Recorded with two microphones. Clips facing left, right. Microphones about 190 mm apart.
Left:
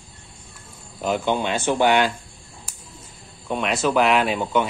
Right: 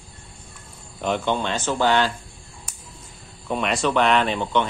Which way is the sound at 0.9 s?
5° left (ahead or behind).